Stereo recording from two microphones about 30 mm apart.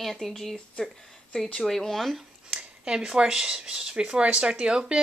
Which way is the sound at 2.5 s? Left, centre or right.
Right.